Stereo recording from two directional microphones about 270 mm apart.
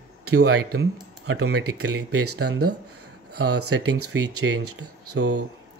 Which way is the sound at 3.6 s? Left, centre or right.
Right.